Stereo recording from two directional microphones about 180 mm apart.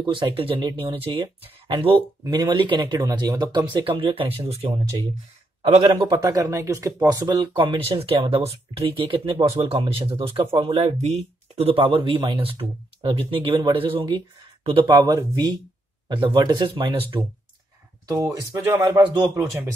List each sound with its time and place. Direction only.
0.0 s speech: 25° right (ahead or behind)
5.8 s speech: 25° right (ahead or behind)